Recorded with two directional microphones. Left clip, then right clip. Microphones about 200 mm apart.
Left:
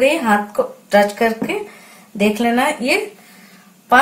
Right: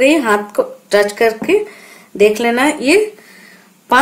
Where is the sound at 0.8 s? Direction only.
55° right (ahead or behind).